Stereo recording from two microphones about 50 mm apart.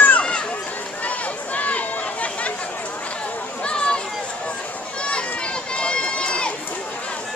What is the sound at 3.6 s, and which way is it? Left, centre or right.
Run, centre.